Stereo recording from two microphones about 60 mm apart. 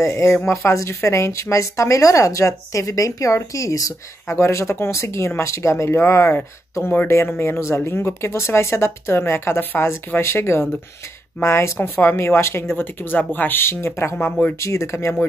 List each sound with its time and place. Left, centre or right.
0.0 s a woman's voice: left
4.4 s speech: left
6.8 s speech: left
7.1 s speech: left